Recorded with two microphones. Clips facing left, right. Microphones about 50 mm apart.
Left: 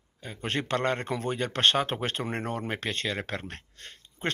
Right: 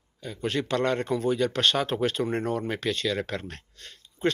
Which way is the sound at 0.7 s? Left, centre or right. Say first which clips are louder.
Right 2 dB; left.